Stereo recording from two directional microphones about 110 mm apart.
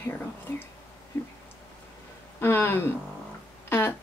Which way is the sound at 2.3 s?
20° left (ahead or behind).